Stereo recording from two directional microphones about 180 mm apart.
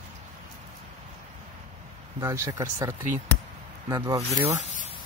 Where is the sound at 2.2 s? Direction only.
20° right (ahead or behind).